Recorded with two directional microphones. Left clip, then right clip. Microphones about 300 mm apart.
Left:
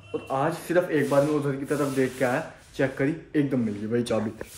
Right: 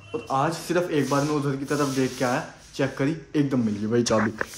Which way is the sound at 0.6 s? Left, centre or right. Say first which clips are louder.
Left 1 dB; centre.